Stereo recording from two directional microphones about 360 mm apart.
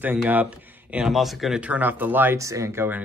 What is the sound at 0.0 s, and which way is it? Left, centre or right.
Speech, centre.